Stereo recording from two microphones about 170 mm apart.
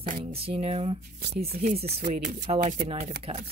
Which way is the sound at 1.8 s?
70° right (ahead or behind).